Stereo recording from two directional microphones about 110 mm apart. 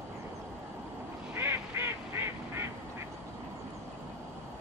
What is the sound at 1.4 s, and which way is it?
Quack, 20° right (ahead or behind).